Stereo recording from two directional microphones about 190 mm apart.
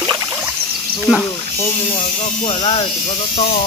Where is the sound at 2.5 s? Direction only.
30° left (ahead or behind).